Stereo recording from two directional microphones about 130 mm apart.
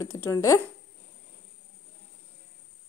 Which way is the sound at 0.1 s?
20° left (ahead or behind).